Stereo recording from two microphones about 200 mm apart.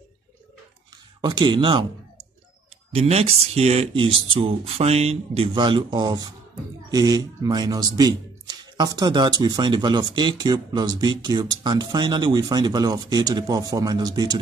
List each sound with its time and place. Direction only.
1.2 s speech: 25° right (ahead or behind)
2.9 s speech: 30° right (ahead or behind)